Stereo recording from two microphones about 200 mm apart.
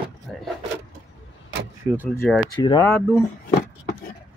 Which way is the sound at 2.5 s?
20° left (ahead or behind).